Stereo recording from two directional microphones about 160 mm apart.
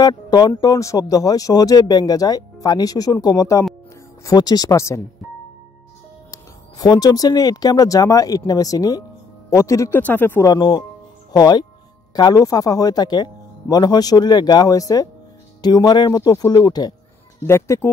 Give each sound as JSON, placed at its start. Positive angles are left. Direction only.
{"t": 0.0, "sound": "speech", "side_deg": 25}
{"t": 6.3, "sound": "speech", "side_deg": 25}
{"t": 10.5, "sound": "speech", "side_deg": 25}